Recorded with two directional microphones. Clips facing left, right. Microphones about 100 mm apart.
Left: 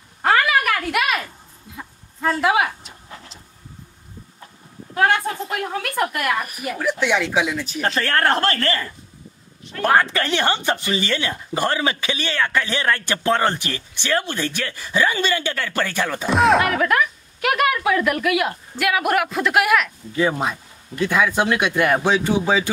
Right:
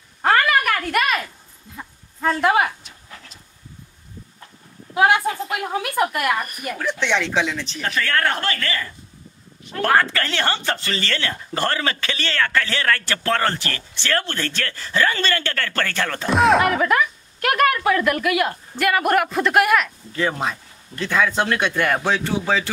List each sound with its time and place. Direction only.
0.2 s a sound: centre (ahead or behind)
2.8 s pant: 30° left (ahead or behind)
4.9 s speech: 10° right (ahead or behind); by 7.8 s 10° left (ahead or behind)
7.8 s speech: 35° left (ahead or behind)
9.8 s speech: 20° left (ahead or behind)
16.3 s speech: centre (ahead or behind)
20.1 s speech: 10° left (ahead or behind)